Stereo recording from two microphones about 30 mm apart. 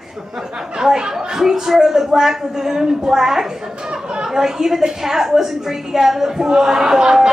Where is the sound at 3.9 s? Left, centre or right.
Right.